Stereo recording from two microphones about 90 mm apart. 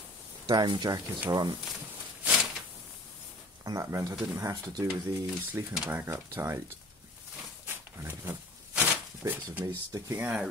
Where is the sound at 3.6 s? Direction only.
40° right (ahead or behind).